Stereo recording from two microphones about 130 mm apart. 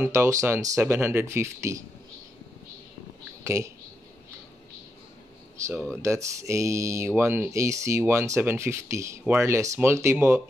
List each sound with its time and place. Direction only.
0.0 s speech: 20° right (ahead or behind)
3.4 s speech: 20° right (ahead or behind)
6.0 s speech: 25° right (ahead or behind)